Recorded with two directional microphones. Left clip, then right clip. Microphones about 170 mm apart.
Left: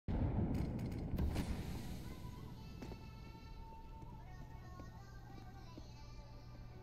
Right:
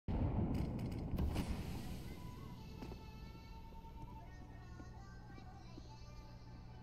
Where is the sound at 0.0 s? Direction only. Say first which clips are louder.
Even; centre (ahead or behind).